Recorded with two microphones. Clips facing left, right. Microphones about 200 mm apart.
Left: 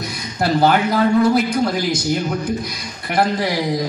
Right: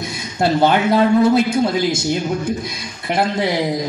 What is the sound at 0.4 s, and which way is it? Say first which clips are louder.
A man's voice: right 1 dB; 25° right (ahead or behind).